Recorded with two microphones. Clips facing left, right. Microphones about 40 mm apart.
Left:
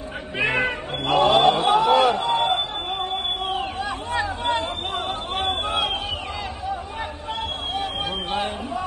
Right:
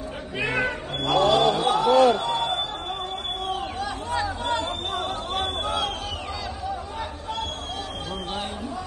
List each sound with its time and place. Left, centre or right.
0.4 s cat: left
2.2 s a sound: left
3.4 s chatter: left